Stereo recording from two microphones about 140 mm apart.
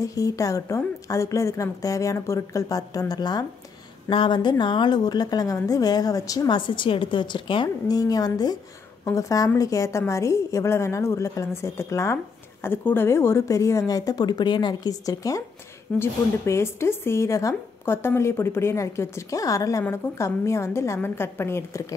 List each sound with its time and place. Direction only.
0.0 s a woman's voice: 25° left (ahead or behind)